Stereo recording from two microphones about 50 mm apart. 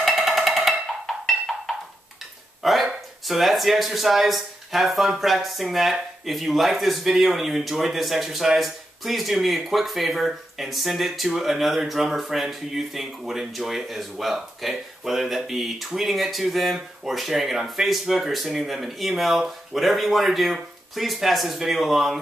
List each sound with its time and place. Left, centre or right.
0.0 s music: centre
2.6 s speech: centre